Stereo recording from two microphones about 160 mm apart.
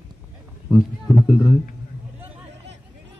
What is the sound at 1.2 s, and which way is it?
Speech, 20° left (ahead or behind).